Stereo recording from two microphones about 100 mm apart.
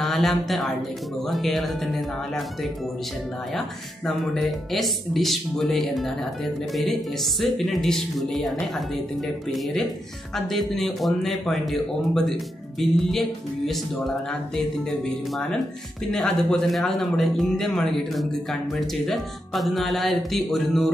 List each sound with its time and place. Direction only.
0.0 s speech: centre (ahead or behind)
10.3 s speech: 5° left (ahead or behind)